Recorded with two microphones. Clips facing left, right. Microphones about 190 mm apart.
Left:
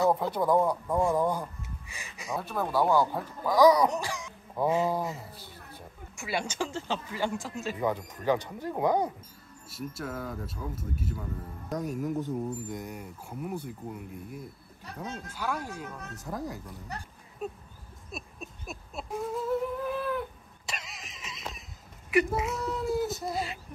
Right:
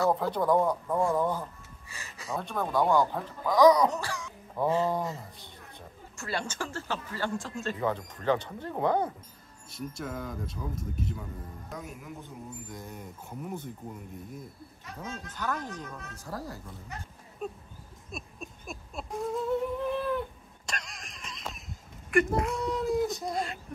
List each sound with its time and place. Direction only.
0.0 s speech: 20° left (ahead or behind)
0.3 s speech: 5° left (ahead or behind)
0.9 s speech: 15° left (ahead or behind)
11.7 s speech: 40° left (ahead or behind)
12.6 s speech: 20° left (ahead or behind)
12.9 s speech: 5° left (ahead or behind)
16.2 s speech: 20° left (ahead or behind)
17.4 s a sound: centre (ahead or behind)